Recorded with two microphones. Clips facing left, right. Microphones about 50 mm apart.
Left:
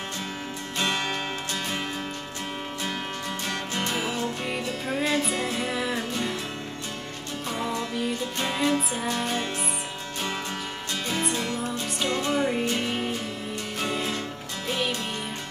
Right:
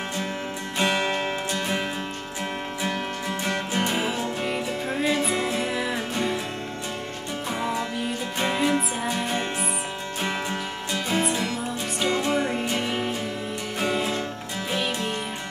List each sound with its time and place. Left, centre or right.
0.7 s music: centre
3.4 s music: centre
5.6 s music: centre
7.5 s music: centre
8.6 s music: centre
11.2 s music: centre
12.1 s music: centre